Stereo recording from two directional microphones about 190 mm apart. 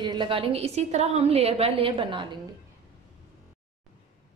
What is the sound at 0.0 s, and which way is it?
A woman's voice, 25° right (ahead or behind).